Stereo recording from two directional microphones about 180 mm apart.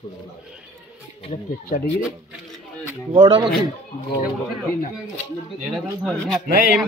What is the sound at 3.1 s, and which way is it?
Speech, 25° right (ahead or behind).